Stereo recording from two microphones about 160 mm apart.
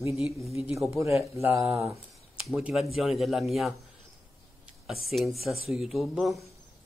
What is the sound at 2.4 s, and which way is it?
Speech, 5° right (ahead or behind).